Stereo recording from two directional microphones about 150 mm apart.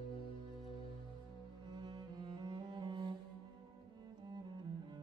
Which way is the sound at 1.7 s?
30° right (ahead or behind).